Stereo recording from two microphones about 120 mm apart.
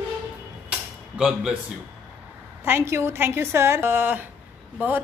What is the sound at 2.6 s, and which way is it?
A woman's voice, 20° right (ahead or behind).